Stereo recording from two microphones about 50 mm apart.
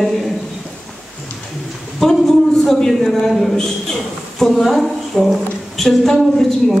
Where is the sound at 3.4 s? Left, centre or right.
Centre.